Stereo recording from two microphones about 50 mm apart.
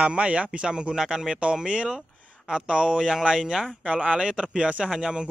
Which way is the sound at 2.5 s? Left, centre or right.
Centre.